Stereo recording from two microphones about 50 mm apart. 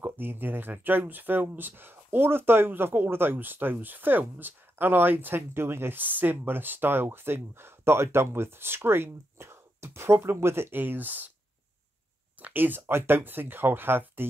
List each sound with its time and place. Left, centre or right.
0.0 s speech: right
5.9 s speech: right
10.8 s speech: right
12.4 s speech: right